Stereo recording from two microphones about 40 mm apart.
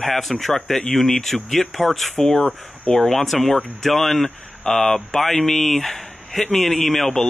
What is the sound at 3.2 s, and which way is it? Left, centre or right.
Speech, centre.